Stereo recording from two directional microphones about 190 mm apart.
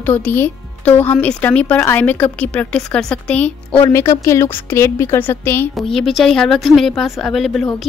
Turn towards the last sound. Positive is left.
turn(degrees=0)  # may be behind; listen again after turning